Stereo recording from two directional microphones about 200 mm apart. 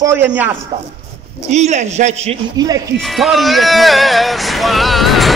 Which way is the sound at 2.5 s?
20° right (ahead or behind).